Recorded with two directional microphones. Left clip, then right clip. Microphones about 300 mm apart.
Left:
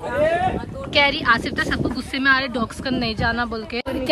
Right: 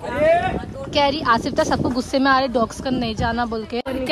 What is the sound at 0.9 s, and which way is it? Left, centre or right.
A woman's voice, centre.